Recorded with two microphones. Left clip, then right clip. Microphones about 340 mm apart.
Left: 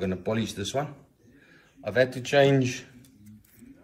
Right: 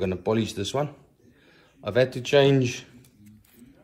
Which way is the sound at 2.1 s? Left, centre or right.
Centre.